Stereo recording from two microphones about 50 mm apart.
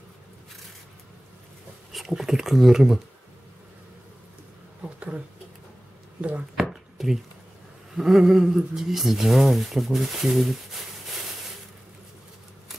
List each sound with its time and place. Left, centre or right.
1.9 s speech: centre
4.8 s a sound: right
6.5 s chopping: centre
8.0 s speech: centre